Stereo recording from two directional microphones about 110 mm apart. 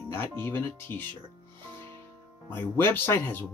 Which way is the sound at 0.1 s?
20° left (ahead or behind).